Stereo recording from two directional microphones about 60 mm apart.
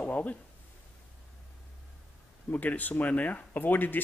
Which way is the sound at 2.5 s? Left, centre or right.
Left.